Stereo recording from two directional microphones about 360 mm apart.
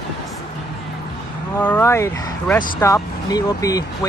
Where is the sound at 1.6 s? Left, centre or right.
Centre.